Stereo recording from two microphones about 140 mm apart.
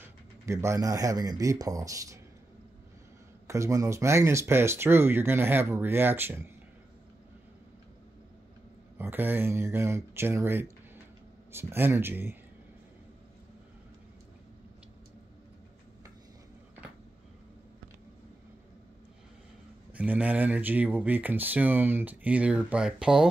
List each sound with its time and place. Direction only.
0.0 s speech: 20° right (ahead or behind)
3.4 s speech: 20° right (ahead or behind)
8.9 s speech: 15° right (ahead or behind)
19.9 s speech: 10° right (ahead or behind)